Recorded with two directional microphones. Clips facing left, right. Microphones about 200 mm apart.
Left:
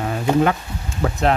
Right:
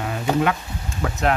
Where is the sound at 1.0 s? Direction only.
35° left (ahead or behind).